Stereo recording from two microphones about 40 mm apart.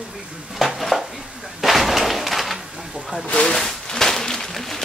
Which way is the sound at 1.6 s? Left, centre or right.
Centre.